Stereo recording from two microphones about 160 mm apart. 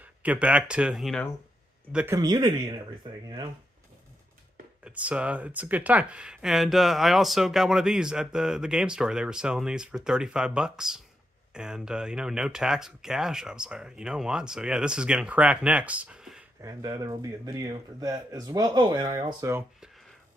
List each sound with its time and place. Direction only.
0.0 s speech: 10° right (ahead or behind)
2.1 s speech: 25° right (ahead or behind)
4.8 s speech: 10° right (ahead or behind)
16.6 s speech: 20° right (ahead or behind)